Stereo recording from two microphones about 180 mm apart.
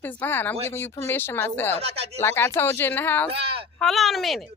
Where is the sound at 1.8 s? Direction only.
35° right (ahead or behind).